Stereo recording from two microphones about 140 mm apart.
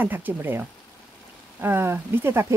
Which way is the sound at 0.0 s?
15° right (ahead or behind).